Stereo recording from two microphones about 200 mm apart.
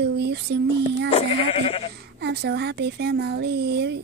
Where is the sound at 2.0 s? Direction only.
55° right (ahead or behind).